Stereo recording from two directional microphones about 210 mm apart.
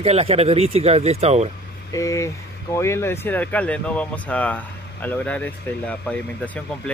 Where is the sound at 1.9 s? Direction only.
15° left (ahead or behind).